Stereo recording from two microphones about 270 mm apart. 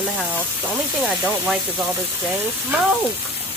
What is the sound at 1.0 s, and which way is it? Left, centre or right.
Speech, centre.